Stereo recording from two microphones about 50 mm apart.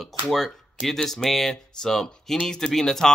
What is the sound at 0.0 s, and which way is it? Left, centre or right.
Speech, centre.